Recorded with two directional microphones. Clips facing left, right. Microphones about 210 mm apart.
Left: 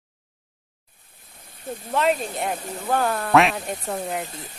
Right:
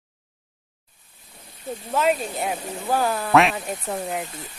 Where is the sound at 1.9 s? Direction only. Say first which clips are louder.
Even; centre (ahead or behind).